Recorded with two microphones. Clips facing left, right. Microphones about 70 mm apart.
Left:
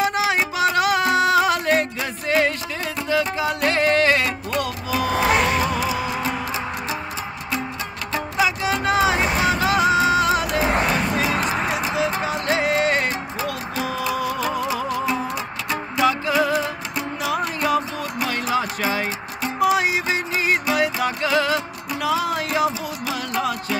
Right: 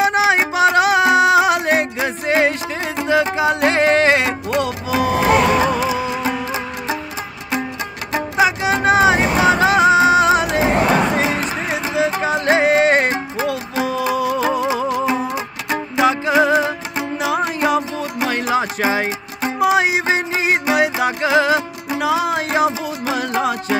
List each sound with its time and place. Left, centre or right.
0.0 s music: right
8.1 s music: right
11.4 s a sound: left
12.0 s music: right